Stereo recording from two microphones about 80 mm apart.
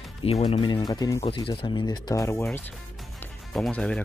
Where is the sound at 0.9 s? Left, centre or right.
Left.